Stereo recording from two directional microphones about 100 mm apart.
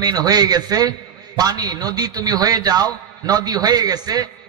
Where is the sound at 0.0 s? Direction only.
40° right (ahead or behind).